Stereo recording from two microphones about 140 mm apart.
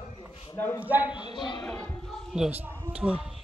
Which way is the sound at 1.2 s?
35° left (ahead or behind).